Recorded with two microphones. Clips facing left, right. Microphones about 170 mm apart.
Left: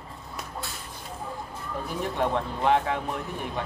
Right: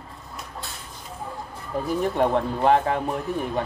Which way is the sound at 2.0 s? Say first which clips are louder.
Right 4 dB; 40° right (ahead or behind).